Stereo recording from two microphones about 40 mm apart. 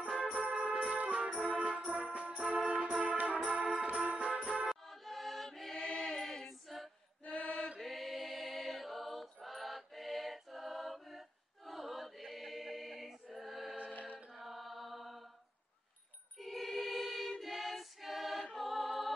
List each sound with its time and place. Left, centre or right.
0.0 s music: right
4.8 s music: centre
5.8 s choir: centre
6.0 s a capella: centre
7.2 s mantra: left
7.8 s choir: centre
14.3 s mantra: centre
16.3 s music: centre
17.4 s choir: centre
18.5 s music: centre